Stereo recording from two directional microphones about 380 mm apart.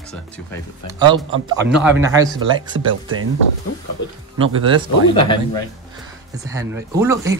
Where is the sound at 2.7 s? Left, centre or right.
Right.